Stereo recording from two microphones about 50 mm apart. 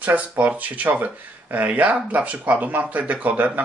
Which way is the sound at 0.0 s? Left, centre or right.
Right.